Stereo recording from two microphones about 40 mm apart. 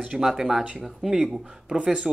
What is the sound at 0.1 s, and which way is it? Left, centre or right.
Speech, centre.